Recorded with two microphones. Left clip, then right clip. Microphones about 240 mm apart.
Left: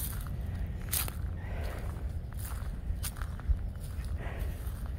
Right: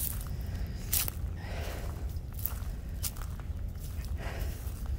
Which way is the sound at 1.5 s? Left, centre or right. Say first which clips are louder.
Right 2 dB; centre.